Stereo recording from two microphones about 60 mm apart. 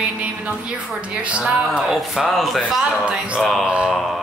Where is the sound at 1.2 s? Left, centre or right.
Centre.